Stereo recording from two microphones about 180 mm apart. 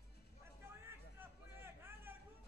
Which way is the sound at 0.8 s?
15° right (ahead or behind).